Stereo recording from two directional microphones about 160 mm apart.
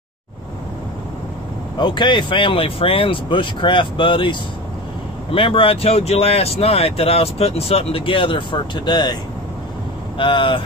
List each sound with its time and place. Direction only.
1.8 s speech: 30° left (ahead or behind)